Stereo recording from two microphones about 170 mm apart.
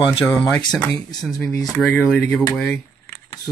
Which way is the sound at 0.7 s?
5° left (ahead or behind).